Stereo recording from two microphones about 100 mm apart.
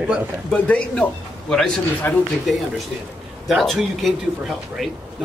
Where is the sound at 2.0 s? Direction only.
20° left (ahead or behind).